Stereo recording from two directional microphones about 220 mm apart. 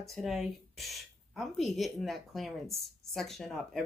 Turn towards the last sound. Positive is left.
turn(degrees=0)  # may be behind; listen again after turning